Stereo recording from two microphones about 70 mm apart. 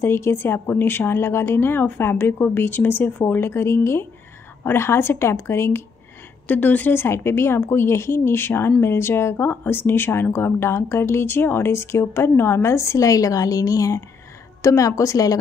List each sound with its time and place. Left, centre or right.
0.0 s a woman's voice: left
6.4 s a woman's voice: left